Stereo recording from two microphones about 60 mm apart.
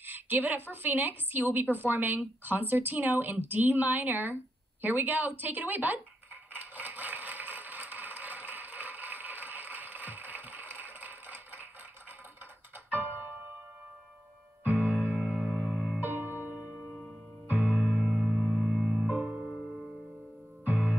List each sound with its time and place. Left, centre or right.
0.0 s a woman's voice: right
6.5 s a sound: right
12.7 s music: right
14.6 s music: right
16.0 s music: right; by 19.4 s centre
20.6 s music: right